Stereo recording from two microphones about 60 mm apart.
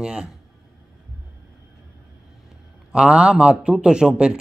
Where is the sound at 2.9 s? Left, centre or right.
Centre.